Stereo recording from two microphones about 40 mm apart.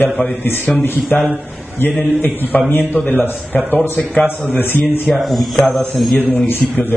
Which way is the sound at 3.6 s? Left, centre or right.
Right.